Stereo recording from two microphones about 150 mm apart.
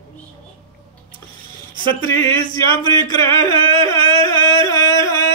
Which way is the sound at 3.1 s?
25° left (ahead or behind).